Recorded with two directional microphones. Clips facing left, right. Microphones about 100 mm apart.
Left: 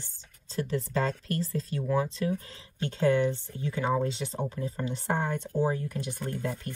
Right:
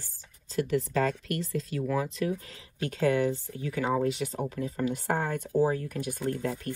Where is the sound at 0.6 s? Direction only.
30° left (ahead or behind).